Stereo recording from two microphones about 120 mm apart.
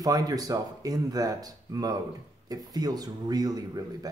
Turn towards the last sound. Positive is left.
turn(degrees=-30)  # may be behind; listen again after turning